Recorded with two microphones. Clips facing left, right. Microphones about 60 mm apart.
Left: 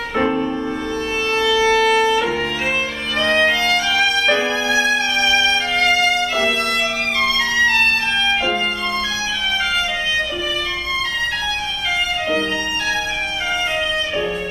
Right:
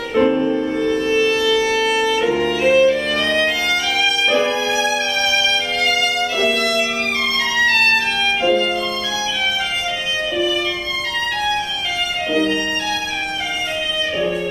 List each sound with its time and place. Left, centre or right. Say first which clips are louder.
0.1 s music: right 4 dB; left
1.3 s music: left 1 dB; left
3.2 s violin: left 2 dB; left
8.4 s violin: right 4 dB; left